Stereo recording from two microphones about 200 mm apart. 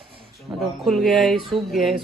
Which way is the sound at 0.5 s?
10° right (ahead or behind).